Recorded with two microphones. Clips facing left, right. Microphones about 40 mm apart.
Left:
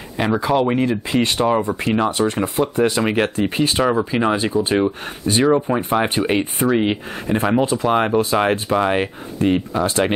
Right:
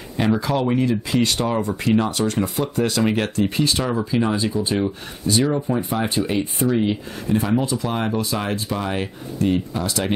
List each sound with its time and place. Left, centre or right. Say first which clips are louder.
0.2 s speech: left 3 dB; centre; by 10.1 s left